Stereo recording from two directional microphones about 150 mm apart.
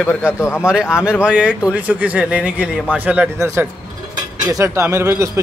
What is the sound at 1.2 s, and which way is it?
Speech, 10° right (ahead or behind).